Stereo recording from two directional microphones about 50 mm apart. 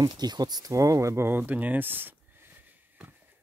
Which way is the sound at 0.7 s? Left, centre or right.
Right.